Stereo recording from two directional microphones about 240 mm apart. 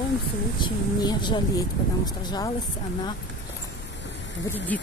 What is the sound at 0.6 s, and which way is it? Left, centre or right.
Speech, centre.